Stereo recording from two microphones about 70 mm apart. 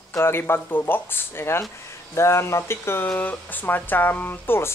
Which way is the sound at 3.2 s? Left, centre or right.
Left.